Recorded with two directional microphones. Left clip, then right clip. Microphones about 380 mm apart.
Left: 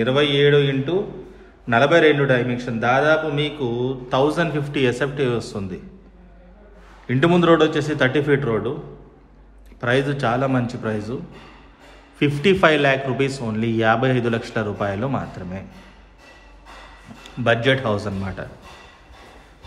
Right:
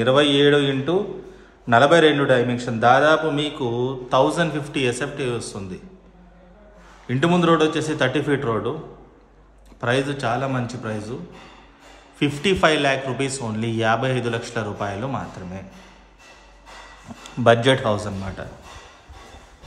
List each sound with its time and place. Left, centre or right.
0.0 s mantra: centre
1.7 s a man's voice: centre
7.1 s a man's voice: centre
9.8 s a man's voice: centre
12.2 s a man's voice: centre
17.4 s mantra: centre
17.9 s a man's voice: centre